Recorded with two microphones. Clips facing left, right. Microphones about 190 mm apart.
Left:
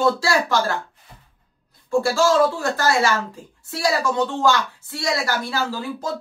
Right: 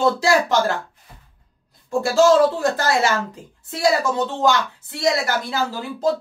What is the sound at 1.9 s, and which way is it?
Speech, 20° right (ahead or behind).